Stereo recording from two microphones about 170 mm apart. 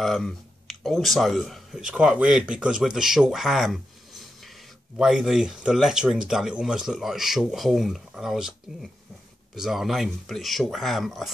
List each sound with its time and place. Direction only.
0.0 s speech: centre (ahead or behind)